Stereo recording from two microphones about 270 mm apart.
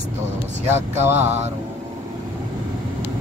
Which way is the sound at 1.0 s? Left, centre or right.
Centre.